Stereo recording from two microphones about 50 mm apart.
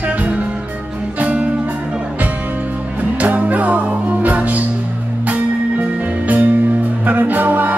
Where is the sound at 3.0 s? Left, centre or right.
Right.